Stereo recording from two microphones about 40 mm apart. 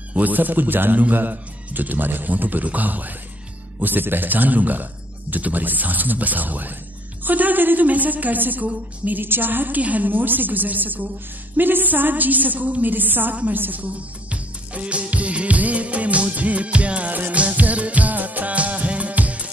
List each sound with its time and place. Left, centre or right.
0.1 s speech: right
3.8 s speech: right
9.2 s a woman's voice: right
9.8 s a woman's voice: right
10.0 s speech: right
13.8 s music: right
17.1 s music: right